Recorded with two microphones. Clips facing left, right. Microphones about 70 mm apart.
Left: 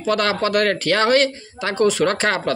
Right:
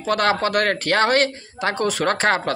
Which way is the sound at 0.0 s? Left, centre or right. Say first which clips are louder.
Even; right.